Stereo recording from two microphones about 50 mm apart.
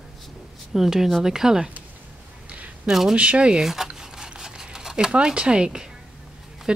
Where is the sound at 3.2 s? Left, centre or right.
Right.